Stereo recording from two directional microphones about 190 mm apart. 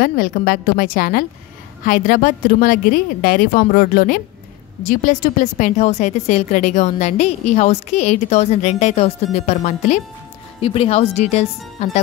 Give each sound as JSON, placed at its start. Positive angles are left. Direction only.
{"t": 0.0, "sound": "a woman's voice", "side_deg": 50}